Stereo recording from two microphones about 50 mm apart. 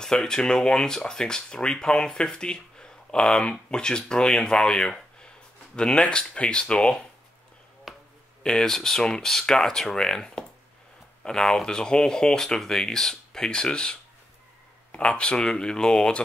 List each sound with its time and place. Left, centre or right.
0.0 s speech: centre
7.9 s finger snapping: centre
8.4 s speech: centre